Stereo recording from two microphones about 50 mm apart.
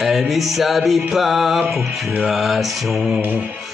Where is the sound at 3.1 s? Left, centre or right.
Right.